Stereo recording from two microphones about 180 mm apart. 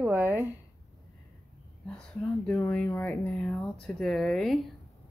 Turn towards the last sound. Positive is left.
turn(degrees=0)  # may be behind; listen again after turning